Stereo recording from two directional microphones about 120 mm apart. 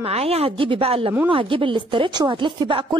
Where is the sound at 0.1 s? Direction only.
55° right (ahead or behind).